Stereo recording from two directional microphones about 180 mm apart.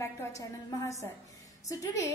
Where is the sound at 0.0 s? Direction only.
15° left (ahead or behind).